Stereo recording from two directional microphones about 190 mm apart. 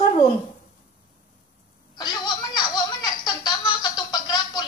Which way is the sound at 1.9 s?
20° left (ahead or behind).